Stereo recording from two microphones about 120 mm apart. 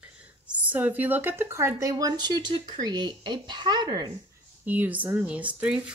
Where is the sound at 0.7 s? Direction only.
15° right (ahead or behind); by 4.1 s 35° right (ahead or behind).